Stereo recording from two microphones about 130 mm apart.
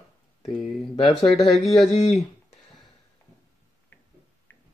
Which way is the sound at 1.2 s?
Centre (ahead or behind).